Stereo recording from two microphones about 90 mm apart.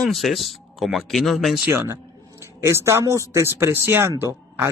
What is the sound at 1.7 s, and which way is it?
Speech, 30° right (ahead or behind).